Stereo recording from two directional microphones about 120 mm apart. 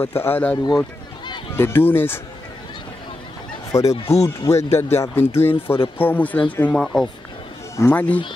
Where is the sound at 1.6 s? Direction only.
20° left (ahead or behind).